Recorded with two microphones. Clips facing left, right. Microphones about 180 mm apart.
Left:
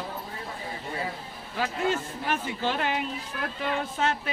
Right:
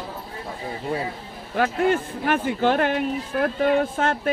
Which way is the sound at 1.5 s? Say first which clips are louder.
Right 7 dB; 55° right (ahead or behind).